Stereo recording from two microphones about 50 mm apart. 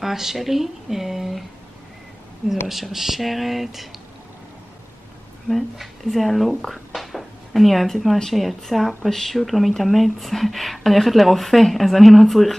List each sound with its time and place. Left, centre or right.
0.0 s speech: centre
2.7 s speech: centre
5.5 s speech: centre